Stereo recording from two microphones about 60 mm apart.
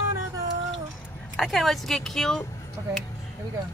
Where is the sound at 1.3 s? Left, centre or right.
Centre.